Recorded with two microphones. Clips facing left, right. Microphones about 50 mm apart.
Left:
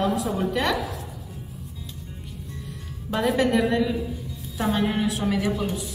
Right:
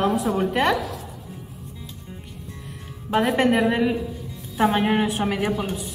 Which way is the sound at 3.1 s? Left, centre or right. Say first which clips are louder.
Right 2 dB; right.